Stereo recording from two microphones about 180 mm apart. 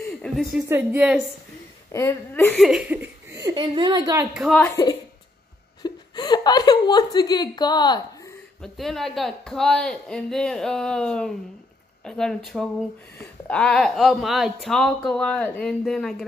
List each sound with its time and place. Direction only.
0.0 s a sound: 5° left (ahead or behind)
0.7 s speech: 10° right (ahead or behind)
1.9 s a woman's voice: 15° left (ahead or behind)
2.5 s speech: centre (ahead or behind); by 4.3 s 20° right (ahead or behind)
4.3 s speech: centre (ahead or behind)
4.6 s a woman's voice: 20° left (ahead or behind)
8.7 s speech: centre (ahead or behind)